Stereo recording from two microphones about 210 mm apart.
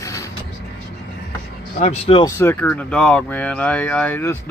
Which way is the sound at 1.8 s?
30° left (ahead or behind).